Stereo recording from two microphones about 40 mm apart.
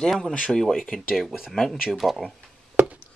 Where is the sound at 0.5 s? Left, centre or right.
Centre.